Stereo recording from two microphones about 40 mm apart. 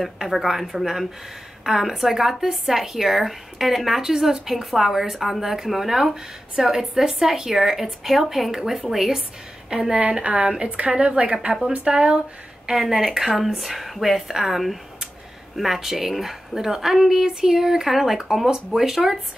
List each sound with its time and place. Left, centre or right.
0.0 s a woman's voice: centre
10.2 s a woman's voice: right; by 12.9 s centre
12.9 s a woman's voice: centre